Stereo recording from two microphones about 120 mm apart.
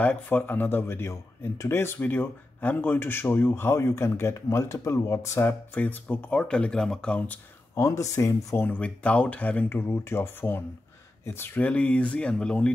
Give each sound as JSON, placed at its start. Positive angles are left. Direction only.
{"t": 0.0, "sound": "speech", "side_deg": 15}
{"t": 7.7, "sound": "speech", "side_deg": 25}
{"t": 8.6, "sound": "speech", "side_deg": 10}